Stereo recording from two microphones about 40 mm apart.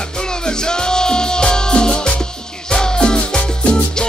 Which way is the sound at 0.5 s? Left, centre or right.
Centre.